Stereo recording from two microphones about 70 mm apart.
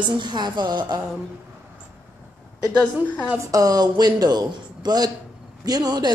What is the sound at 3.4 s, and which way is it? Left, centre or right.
A man's voice, right.